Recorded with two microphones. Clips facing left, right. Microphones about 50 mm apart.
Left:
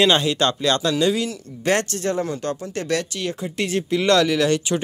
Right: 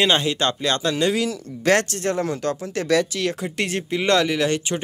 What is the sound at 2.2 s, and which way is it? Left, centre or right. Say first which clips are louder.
Speech: right 1 dB; right.